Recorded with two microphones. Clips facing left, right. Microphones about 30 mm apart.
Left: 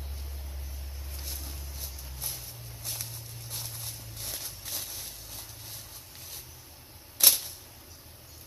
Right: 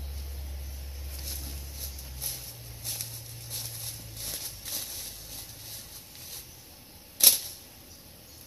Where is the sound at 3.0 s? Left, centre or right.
Centre.